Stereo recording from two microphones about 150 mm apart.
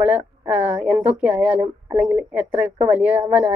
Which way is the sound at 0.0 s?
10° right (ahead or behind).